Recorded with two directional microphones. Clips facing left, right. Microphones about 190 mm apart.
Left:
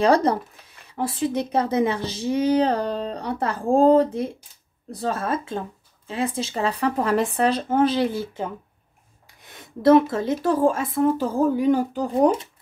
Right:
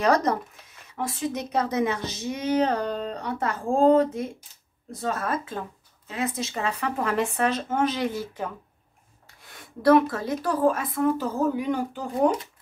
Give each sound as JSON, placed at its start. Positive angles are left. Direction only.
{"t": 0.0, "sound": "speech", "side_deg": 30}